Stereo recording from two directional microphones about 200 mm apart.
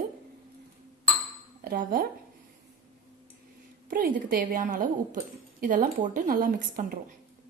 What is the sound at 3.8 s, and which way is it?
A woman's voice, 45° right (ahead or behind).